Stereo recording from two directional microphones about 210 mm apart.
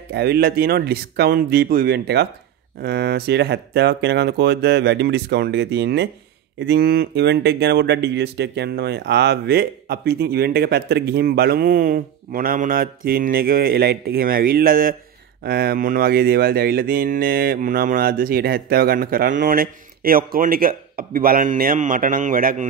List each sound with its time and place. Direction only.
0.1 s speech: 50° right (ahead or behind)